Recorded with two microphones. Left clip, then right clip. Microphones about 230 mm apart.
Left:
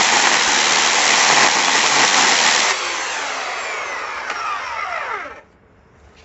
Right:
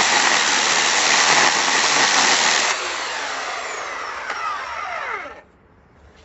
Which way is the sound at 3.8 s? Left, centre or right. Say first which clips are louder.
Left 3 dB; left.